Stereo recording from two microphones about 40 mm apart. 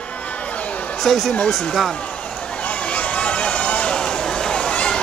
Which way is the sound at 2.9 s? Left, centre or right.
Left.